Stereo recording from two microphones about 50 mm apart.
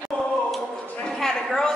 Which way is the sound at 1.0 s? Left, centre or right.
Centre.